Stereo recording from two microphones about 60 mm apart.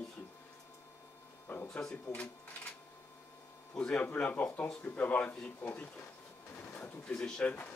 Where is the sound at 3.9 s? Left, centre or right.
Left.